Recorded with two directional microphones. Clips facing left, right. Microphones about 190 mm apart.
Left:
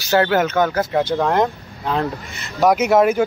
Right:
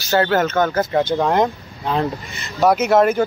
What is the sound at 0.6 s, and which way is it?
Speech, 5° left (ahead or behind).